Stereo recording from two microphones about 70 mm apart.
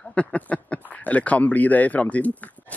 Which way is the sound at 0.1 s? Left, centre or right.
Centre.